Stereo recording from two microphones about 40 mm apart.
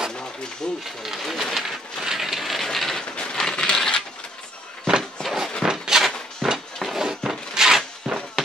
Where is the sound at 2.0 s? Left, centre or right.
Centre.